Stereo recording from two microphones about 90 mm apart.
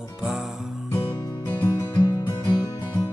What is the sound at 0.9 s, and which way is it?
Music, 50° left (ahead or behind).